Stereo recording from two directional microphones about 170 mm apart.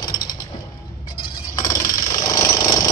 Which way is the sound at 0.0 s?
25° left (ahead or behind).